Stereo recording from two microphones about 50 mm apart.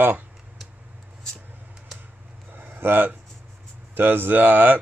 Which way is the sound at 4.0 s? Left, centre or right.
Right.